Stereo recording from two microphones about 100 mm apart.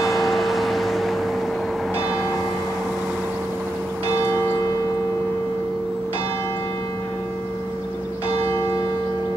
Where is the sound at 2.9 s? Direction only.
Centre (ahead or behind).